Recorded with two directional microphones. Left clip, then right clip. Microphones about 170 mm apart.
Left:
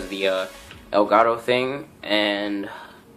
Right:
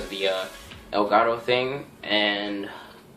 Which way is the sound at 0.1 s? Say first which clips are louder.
Left 3 dB; 45° left (ahead or behind).